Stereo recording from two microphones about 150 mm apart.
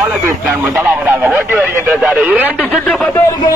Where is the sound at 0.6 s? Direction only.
10° right (ahead or behind).